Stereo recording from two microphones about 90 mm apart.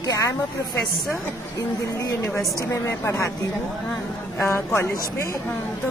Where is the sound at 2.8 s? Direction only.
35° left (ahead or behind).